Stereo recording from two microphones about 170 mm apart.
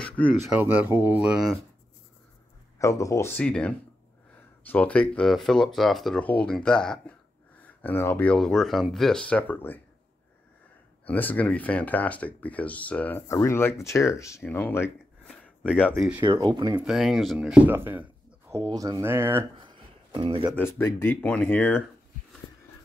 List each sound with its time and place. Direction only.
0.0 s a sound: 5° left (ahead or behind)
0.5 s speech: 10° right (ahead or behind)
2.8 s speech: 20° left (ahead or behind)
11.1 s speech: 10° left (ahead or behind)
16.2 s speech: 25° right (ahead or behind)
16.7 s speech: centre (ahead or behind)
19.6 s a sound: 30° right (ahead or behind)
20.5 s speech: 10° left (ahead or behind)